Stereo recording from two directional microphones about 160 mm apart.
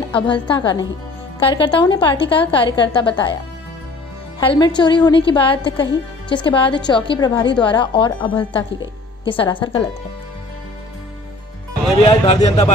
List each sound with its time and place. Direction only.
0.1 s a woman's voice: 30° left (ahead or behind)
4.4 s a woman's voice: 25° left (ahead or behind)
12.0 s a woman's voice: 30° left (ahead or behind)